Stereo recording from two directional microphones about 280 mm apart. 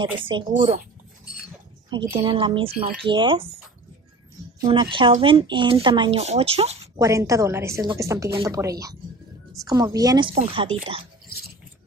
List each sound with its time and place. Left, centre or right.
0.2 s a woman's voice: centre
1.9 s a woman's voice: centre
4.6 s speech: centre
7.0 s a woman's voice: centre